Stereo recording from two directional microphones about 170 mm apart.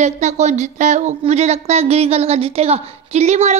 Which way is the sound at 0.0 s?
40° right (ahead or behind).